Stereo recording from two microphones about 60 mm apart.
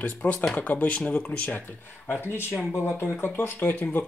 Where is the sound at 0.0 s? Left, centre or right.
Left.